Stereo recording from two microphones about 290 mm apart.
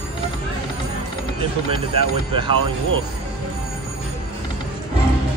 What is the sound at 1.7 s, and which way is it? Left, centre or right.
Speech, centre.